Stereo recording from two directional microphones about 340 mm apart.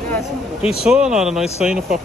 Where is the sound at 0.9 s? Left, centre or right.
Centre.